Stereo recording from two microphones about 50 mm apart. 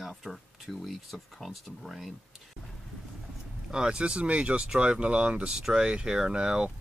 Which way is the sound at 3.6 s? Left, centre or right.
Centre.